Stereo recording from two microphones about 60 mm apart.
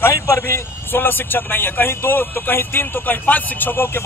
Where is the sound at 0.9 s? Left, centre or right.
Left.